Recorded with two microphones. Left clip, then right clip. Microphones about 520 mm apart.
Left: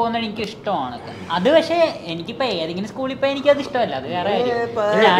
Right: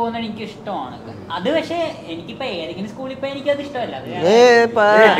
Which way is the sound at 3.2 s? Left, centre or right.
Left.